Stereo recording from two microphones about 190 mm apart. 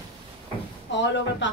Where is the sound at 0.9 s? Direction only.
70° left (ahead or behind).